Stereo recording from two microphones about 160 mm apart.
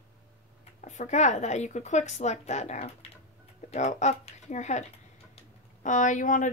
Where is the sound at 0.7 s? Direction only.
50° left (ahead or behind).